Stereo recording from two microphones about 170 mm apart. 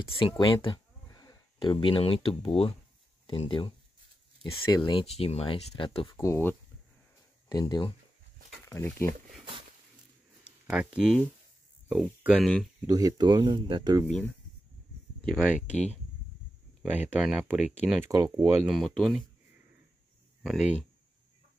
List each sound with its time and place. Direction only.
0.2 s speech: 30° left (ahead or behind)
6.1 s speech: 15° left (ahead or behind)
10.7 s speech: 5° right (ahead or behind)
12.8 s speech: 20° right (ahead or behind)
14.0 s speech: 5° left (ahead or behind)
16.9 s speech: 10° right (ahead or behind)
18.0 s speech: 20° right (ahead or behind)
18.7 s speech: centre (ahead or behind)
20.4 s speech: centre (ahead or behind)